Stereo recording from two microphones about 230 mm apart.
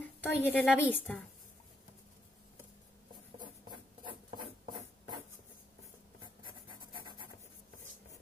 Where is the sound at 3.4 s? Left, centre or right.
Centre.